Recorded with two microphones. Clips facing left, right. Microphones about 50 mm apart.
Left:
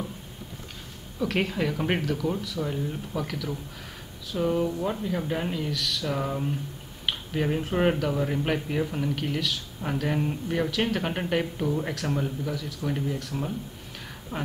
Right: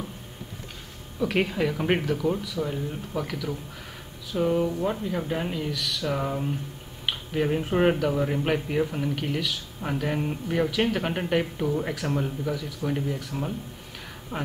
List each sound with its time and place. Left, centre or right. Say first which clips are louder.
1.2 s speech: right 2 dB; centre
14.3 s speech: right 1 dB; centre